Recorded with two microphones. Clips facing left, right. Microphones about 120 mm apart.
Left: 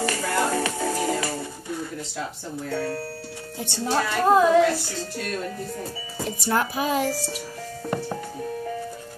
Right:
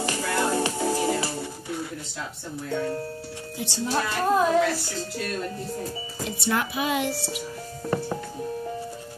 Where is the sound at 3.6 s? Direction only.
55° left (ahead or behind).